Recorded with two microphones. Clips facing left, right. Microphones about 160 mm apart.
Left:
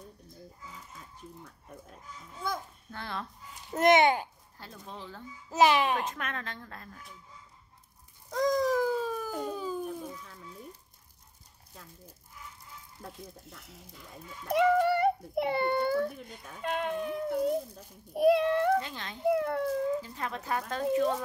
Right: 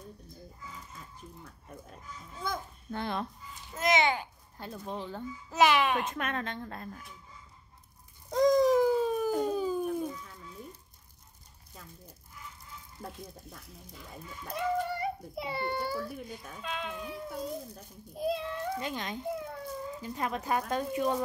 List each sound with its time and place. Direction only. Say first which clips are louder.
2.4 s a sound: left 1 dB; 10° left (ahead or behind)
2.9 s a woman's voice: right 5 dB; 20° right (ahead or behind)
3.7 s a child's voice: left 5 dB; 60° left (ahead or behind)
5.7 s a child's voice: even; 25° left (ahead or behind)
6.1 s a woman's voice: right 4 dB; 25° right (ahead or behind)
8.3 s a sound: right 4 dB; 20° right (ahead or behind)
14.5 s a child's voice: left 8 dB; 75° left (ahead or behind)
18.8 s speech: even; 15° right (ahead or behind)
19.2 s a child's voice: left 9 dB; 70° left (ahead or behind)
20.0 s speech: right 3 dB; 15° right (ahead or behind)